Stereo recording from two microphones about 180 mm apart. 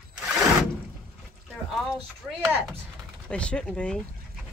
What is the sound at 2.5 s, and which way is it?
Speech, 10° right (ahead or behind).